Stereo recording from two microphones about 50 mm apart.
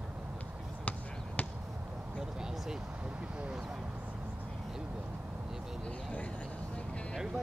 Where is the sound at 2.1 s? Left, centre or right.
Centre.